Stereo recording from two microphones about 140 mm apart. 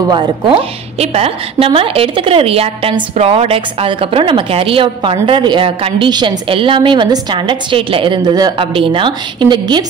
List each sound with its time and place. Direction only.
0.1 s a woman's voice: 40° right (ahead or behind)